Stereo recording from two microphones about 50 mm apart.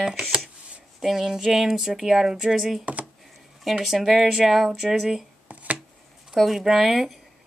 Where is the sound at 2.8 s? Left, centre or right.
Right.